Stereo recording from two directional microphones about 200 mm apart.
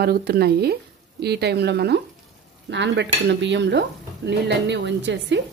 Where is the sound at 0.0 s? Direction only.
50° right (ahead or behind).